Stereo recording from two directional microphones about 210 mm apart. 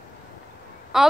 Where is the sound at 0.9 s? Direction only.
5° right (ahead or behind).